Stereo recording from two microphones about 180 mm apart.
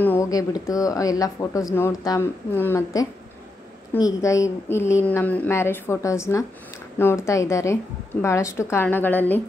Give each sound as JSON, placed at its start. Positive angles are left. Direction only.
{"t": 0.0, "sound": "speech", "side_deg": 15}